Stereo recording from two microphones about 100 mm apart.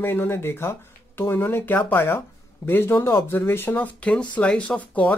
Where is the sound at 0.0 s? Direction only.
20° left (ahead or behind).